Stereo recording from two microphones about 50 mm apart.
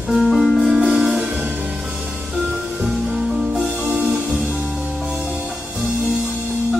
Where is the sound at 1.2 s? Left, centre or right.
Right.